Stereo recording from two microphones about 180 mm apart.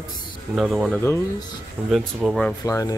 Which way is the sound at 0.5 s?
Centre (ahead or behind).